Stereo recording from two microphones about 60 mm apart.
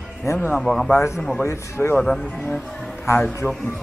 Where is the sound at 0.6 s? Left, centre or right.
Centre.